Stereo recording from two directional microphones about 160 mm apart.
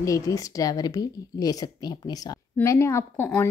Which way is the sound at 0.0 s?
20° left (ahead or behind).